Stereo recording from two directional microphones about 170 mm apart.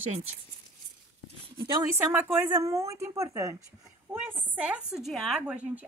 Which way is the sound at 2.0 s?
10° right (ahead or behind).